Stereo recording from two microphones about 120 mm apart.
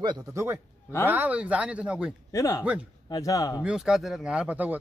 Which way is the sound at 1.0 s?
15° right (ahead or behind).